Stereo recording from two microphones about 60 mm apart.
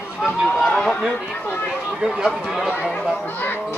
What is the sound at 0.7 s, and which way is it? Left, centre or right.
Chatter, centre.